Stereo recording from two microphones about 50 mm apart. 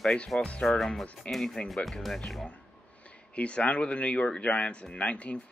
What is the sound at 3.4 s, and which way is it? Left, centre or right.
Speech, left.